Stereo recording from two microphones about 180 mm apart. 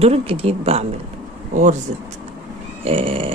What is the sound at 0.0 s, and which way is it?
Speech, 35° right (ahead or behind).